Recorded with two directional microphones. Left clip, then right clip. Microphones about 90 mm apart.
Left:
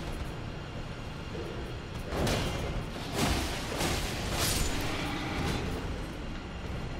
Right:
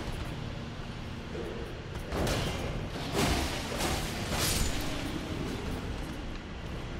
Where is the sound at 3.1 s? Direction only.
Centre (ahead or behind).